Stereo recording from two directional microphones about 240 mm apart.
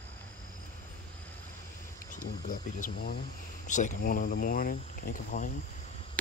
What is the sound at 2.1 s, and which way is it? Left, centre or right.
Speech, left.